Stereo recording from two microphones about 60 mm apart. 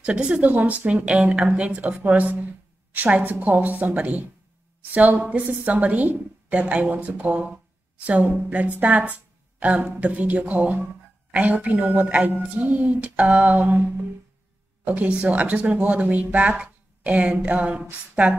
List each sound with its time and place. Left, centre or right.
0.0 s speech: centre